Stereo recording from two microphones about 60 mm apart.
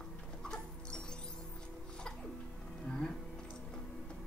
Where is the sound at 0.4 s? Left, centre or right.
Centre.